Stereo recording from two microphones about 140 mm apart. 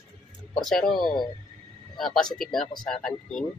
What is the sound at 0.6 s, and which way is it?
Speech, 5° left (ahead or behind).